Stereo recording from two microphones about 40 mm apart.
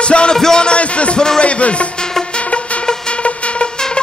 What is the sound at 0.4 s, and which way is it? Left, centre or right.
Speech, centre.